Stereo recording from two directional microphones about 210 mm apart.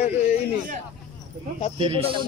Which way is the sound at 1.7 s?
25° right (ahead or behind).